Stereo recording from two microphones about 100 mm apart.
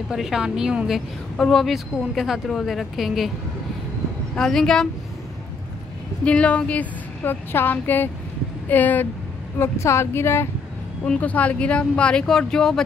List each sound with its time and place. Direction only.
0.1 s a woman's voice: 5° right (ahead or behind)
4.4 s a woman's voice: 5° left (ahead or behind)
6.2 s speech: 10° left (ahead or behind)
9.6 s speech: 30° left (ahead or behind)
11.1 s speech: 15° left (ahead or behind)